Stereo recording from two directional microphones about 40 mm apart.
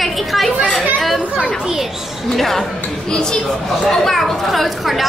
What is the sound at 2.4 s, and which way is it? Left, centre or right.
Speech, centre.